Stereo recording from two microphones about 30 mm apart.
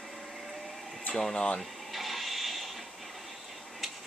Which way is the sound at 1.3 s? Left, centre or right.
Left.